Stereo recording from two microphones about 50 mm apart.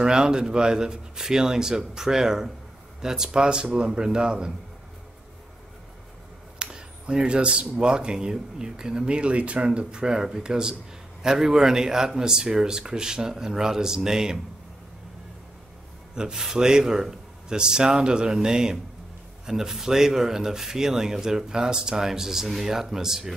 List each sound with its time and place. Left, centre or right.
0.0 s a man's voice: centre
6.6 s a sound: centre
7.8 s speech: centre
16.2 s speech: centre